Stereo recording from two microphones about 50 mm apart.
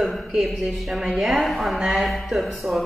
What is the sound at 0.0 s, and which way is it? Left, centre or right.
Speech, centre.